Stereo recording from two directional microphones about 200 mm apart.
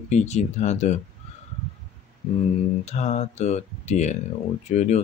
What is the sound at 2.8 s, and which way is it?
Speech, 35° left (ahead or behind).